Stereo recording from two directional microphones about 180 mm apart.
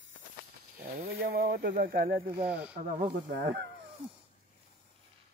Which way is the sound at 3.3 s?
75° right (ahead or behind).